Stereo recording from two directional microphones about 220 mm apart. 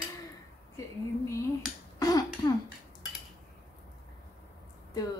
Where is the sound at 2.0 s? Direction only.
15° left (ahead or behind).